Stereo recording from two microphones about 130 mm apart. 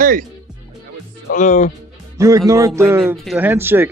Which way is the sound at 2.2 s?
25° right (ahead or behind).